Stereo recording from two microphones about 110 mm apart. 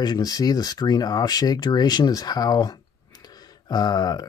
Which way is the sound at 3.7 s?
40° left (ahead or behind).